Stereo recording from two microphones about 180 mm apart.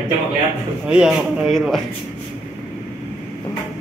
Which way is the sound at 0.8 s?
5° right (ahead or behind).